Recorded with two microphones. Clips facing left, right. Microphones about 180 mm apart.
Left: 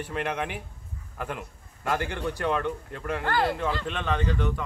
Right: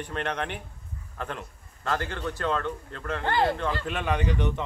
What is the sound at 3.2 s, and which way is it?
Speech, 20° right (ahead or behind).